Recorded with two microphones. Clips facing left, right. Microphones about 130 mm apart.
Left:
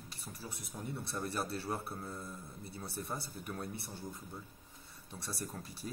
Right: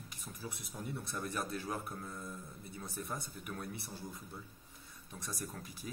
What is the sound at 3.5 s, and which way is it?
Speech, 20° left (ahead or behind).